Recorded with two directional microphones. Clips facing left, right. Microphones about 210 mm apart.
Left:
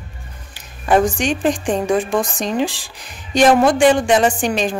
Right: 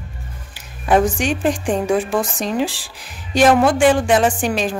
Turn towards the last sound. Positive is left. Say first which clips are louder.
# left 1 dB
turn(degrees=-5)  # may be behind; listen again after turning